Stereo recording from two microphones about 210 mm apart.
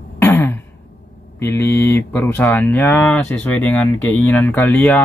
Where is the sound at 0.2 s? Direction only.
10° left (ahead or behind).